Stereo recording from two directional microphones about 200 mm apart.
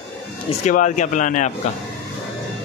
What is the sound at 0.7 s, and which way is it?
Speech, 40° left (ahead or behind).